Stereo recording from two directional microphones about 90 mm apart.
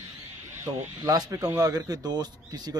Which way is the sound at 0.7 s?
40° right (ahead or behind).